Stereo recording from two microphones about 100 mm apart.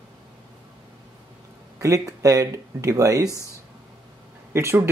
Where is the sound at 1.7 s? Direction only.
35° right (ahead or behind).